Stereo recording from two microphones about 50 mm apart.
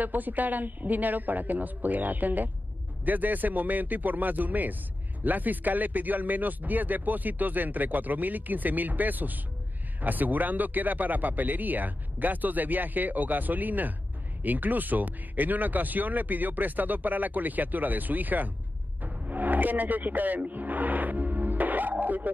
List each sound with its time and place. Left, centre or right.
0.0 s speech: right